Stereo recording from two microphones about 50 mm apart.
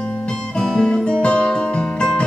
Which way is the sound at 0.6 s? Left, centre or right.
Centre.